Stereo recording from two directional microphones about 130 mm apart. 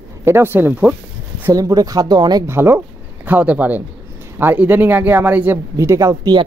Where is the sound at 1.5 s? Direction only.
25° right (ahead or behind).